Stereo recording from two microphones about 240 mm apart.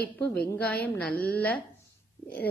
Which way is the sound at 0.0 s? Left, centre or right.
Centre.